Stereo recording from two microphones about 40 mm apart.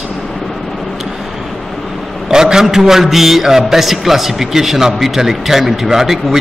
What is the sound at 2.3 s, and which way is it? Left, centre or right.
A man's voice, centre.